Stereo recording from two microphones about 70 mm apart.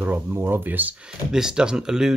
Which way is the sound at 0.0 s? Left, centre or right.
Right.